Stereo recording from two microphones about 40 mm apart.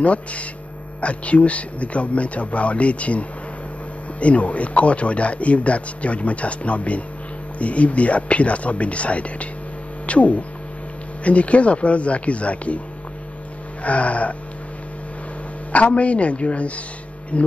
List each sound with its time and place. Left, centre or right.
0.0 s a man's voice: left
13.8 s a man's voice: left
15.7 s a man's voice: left